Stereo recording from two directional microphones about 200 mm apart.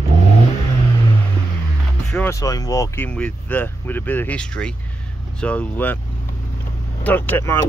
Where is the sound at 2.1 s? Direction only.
15° left (ahead or behind).